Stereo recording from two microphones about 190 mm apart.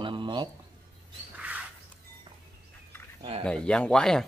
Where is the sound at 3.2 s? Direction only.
30° right (ahead or behind).